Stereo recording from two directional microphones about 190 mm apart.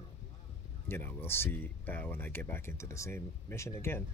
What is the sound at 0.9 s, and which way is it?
Speech, 10° left (ahead or behind).